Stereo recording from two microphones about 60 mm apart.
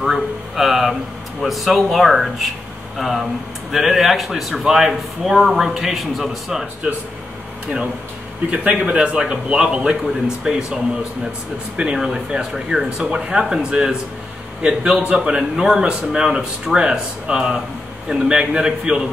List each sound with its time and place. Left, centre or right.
0.0 s speech: centre
8.5 s a man's voice: centre